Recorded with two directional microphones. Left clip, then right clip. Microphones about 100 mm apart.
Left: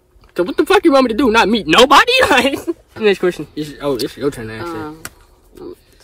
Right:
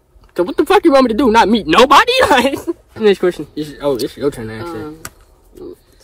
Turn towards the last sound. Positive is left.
turn(degrees=50)  # may be behind; listen again after turning